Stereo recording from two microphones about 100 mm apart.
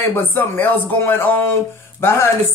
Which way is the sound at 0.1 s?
20° left (ahead or behind).